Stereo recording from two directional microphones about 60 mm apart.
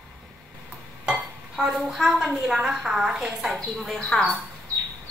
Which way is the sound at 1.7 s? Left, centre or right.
Centre.